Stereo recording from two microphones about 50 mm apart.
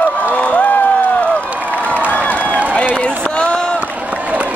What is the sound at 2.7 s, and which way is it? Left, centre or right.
Run, left.